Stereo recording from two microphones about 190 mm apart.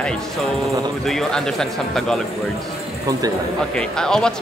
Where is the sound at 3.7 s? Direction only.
5° left (ahead or behind).